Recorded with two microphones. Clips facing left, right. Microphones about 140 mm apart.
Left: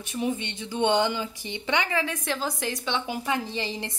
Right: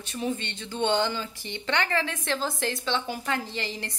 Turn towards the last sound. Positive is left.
turn(degrees=20)  # may be behind; listen again after turning